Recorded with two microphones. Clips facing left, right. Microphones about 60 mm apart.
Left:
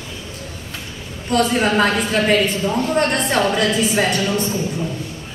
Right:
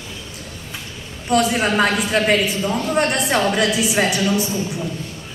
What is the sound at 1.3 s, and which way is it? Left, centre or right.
A man's voice, centre.